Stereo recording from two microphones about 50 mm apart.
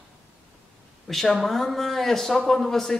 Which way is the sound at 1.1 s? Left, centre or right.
Centre.